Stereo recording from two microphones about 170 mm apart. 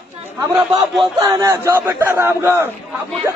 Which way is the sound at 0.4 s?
15° right (ahead or behind).